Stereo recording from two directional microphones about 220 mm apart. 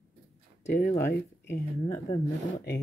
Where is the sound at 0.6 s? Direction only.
40° left (ahead or behind).